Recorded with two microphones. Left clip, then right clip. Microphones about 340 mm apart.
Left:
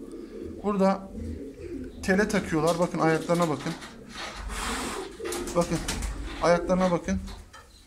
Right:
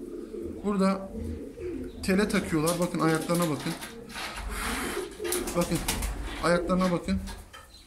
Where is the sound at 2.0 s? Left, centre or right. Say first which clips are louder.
Left 2 dB; left.